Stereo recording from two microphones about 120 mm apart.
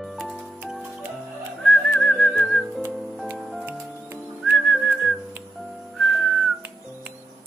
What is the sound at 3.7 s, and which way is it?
Music, 15° right (ahead or behind).